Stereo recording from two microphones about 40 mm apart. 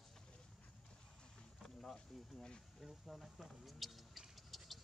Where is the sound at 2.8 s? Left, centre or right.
Centre.